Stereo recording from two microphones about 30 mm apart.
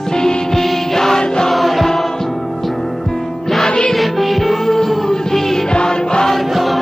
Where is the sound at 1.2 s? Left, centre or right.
Left.